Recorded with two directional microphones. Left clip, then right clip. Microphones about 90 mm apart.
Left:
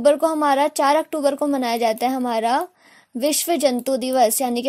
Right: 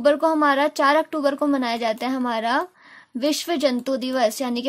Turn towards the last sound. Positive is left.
turn(degrees=55)  # may be behind; listen again after turning